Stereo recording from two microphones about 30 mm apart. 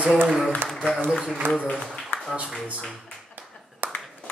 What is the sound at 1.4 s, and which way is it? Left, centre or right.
Speech, left.